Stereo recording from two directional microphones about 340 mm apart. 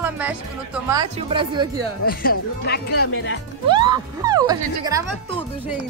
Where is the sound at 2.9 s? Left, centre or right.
Left.